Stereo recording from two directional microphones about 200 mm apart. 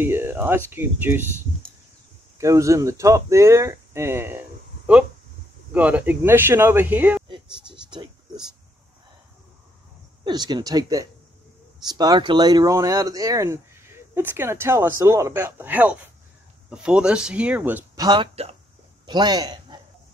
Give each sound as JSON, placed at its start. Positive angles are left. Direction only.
{"t": 0.0, "sound": "speech", "side_deg": -10}
{"t": 2.3, "sound": "speech", "side_deg": -15}
{"t": 5.7, "sound": "speech", "side_deg": -5}
{"t": 7.2, "sound": "a sound", "side_deg": -25}
{"t": 10.2, "sound": "speech", "side_deg": -20}
{"t": 18.0, "sound": "speech", "side_deg": -25}